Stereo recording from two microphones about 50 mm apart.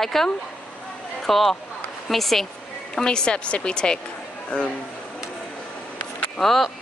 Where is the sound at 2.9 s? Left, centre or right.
Centre.